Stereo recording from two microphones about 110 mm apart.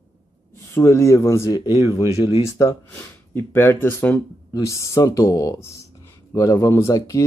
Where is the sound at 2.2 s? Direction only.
60° left (ahead or behind).